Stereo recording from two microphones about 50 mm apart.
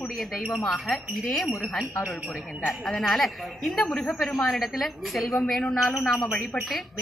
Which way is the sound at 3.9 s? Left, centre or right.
Left.